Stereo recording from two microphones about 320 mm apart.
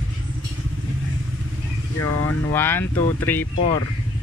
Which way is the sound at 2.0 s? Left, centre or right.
Left.